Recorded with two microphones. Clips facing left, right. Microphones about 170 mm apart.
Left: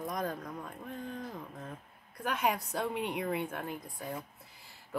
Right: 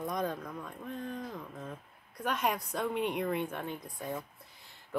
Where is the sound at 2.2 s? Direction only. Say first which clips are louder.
Even; 5° left (ahead or behind).